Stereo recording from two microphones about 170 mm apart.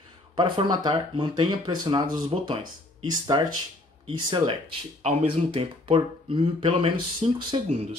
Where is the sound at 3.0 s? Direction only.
25° right (ahead or behind).